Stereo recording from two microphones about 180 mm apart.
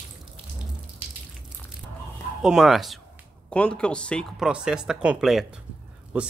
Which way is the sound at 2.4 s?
5° right (ahead or behind).